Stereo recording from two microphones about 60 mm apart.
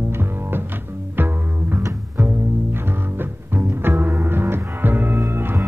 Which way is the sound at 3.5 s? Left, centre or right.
Right.